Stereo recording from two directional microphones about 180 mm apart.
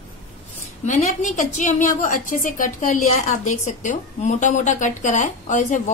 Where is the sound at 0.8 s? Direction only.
40° left (ahead or behind).